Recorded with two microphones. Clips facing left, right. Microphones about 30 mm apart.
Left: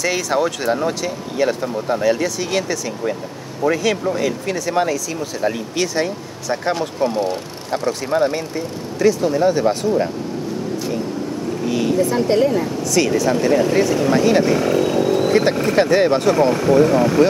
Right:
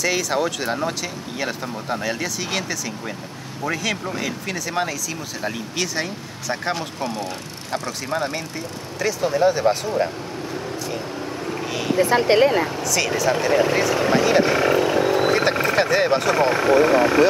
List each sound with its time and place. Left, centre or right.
0.0 s speech: centre
7.1 s speech: centre
11.6 s speech: centre
12.0 s speech: right
13.0 s speech: centre; by 14.2 s right
14.4 s vehicle: right
15.6 s speech: centre
16.5 s speech: centre